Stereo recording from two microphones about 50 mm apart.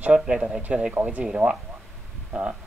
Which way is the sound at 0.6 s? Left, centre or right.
Right.